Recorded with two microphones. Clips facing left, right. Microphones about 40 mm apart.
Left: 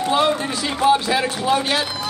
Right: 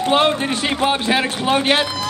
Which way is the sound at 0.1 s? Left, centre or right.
Right.